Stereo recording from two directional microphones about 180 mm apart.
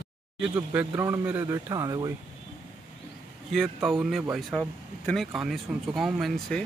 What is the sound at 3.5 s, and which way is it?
Speech, centre (ahead or behind).